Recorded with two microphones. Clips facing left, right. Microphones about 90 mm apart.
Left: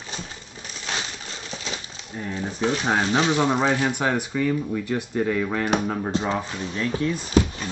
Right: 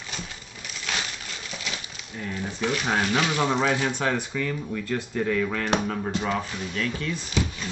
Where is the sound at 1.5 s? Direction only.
30° left (ahead or behind).